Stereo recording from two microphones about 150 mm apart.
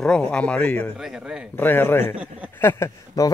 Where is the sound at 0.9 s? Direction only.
5° right (ahead or behind).